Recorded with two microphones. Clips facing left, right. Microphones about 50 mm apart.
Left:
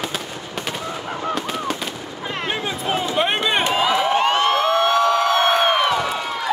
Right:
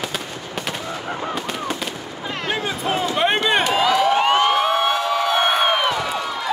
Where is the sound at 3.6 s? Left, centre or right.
Centre.